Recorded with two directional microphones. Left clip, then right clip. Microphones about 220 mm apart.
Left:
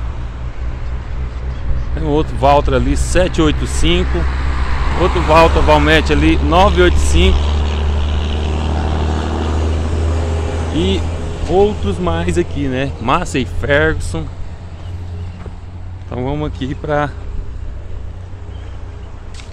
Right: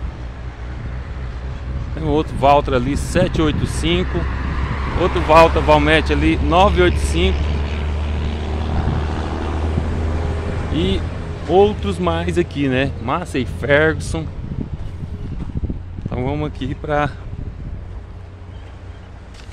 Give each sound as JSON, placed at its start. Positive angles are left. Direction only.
{"t": 2.0, "sound": "speech", "side_deg": -5}
{"t": 4.0, "sound": "vehicle", "side_deg": 30}
{"t": 5.3, "sound": "speech", "side_deg": -10}
{"t": 7.3, "sound": "vehicle", "side_deg": 40}
{"t": 11.5, "sound": "speech", "side_deg": -10}
{"t": 12.5, "sound": "speech", "side_deg": -15}
{"t": 13.0, "sound": "speech", "side_deg": 0}
{"t": 16.1, "sound": "speech", "side_deg": -5}